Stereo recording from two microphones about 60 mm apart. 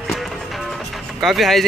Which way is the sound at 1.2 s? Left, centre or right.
Centre.